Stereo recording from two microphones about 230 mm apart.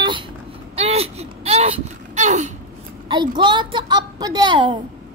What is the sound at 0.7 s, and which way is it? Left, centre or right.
Gasp, right.